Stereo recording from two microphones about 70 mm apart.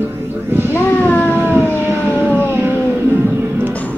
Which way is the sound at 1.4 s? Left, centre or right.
Right.